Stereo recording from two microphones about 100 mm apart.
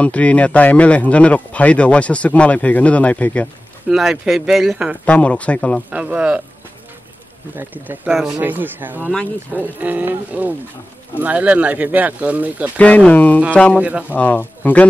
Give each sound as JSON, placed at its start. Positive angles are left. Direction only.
{"t": 0.0, "sound": "speech", "side_deg": 15}
{"t": 3.9, "sound": "speech", "side_deg": -5}
{"t": 5.0, "sound": "speech", "side_deg": 15}
{"t": 5.9, "sound": "speech", "side_deg": -10}
{"t": 7.5, "sound": "speech", "side_deg": -20}
{"t": 12.7, "sound": "speech", "side_deg": 15}
{"t": 13.7, "sound": "speech", "side_deg": -15}
{"t": 14.1, "sound": "speech", "side_deg": 15}